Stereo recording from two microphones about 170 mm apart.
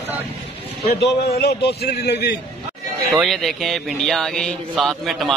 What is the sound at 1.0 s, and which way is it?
A man's voice, 75° left (ahead or behind).